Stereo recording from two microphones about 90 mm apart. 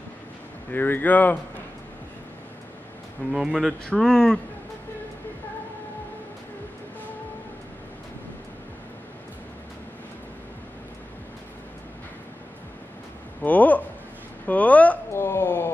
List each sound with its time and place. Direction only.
0.7 s speech: 20° left (ahead or behind)
3.3 s speech: 5° right (ahead or behind)
3.8 s speech: 5° left (ahead or behind)
13.4 s a sound: 15° left (ahead or behind)